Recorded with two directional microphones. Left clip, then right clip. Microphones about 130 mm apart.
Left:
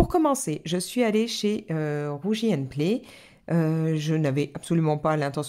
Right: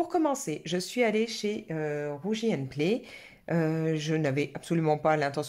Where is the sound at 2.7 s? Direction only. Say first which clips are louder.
Left 2 dB; 35° left (ahead or behind).